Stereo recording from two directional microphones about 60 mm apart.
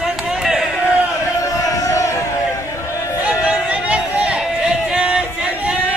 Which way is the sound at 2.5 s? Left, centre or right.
Left.